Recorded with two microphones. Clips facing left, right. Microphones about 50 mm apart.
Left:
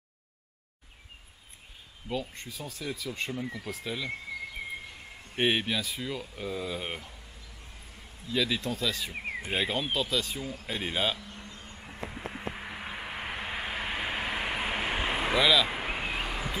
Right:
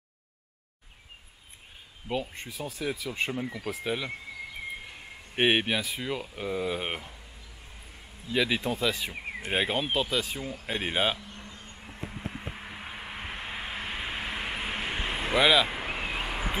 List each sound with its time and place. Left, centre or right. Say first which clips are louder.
2.0 s speech: right 2 dB; right
5.3 s speech: right 3 dB; right
8.3 s speech: right 2 dB; right
9.1 s a sound: left 2 dB; centre
9.5 s speech: right 3 dB; centre
11.3 s vehicle: even; centre
15.3 s speech: right 2 dB; centre
15.7 s a sound: even; centre